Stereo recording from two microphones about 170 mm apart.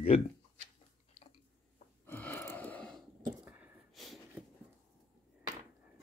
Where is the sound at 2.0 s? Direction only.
10° left (ahead or behind).